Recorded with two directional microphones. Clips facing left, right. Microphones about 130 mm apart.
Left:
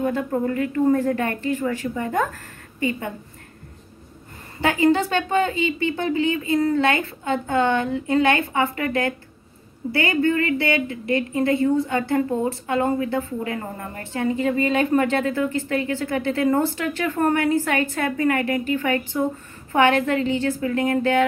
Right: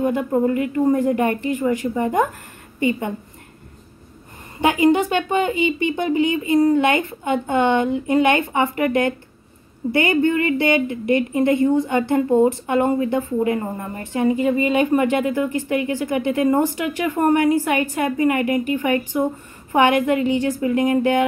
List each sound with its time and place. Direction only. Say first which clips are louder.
0.0 s a woman's voice: right 4 dB; 20° right (ahead or behind)
4.6 s a woman's voice: right 2 dB; 15° right (ahead or behind)